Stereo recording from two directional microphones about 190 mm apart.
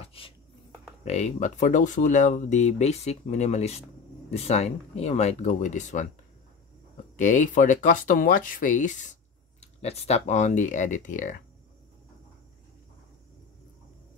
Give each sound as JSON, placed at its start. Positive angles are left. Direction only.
{"t": 0.0, "sound": "a sound", "side_deg": 30}
{"t": 1.0, "sound": "speech", "side_deg": 35}
{"t": 7.2, "sound": "speech", "side_deg": 40}